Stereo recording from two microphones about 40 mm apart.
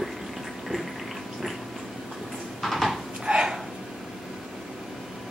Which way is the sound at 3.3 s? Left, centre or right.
Right.